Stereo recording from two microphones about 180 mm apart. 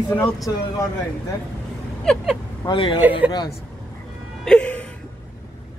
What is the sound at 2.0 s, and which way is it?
Speech, centre (ahead or behind).